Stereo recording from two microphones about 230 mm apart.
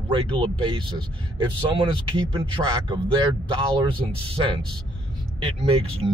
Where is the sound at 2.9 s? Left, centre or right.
Centre.